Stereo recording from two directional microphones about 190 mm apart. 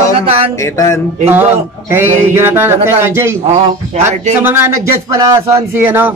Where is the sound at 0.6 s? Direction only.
15° left (ahead or behind).